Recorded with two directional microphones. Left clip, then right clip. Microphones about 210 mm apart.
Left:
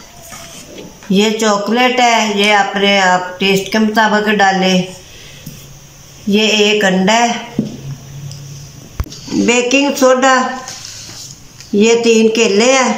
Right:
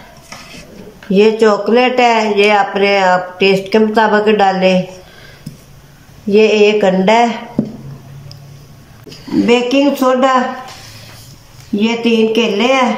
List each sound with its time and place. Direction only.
1.1 s speech: 5° right (ahead or behind)
6.2 s speech: 5° right (ahead or behind)
9.5 s speech: 15° right (ahead or behind)
11.8 s speech: 10° right (ahead or behind)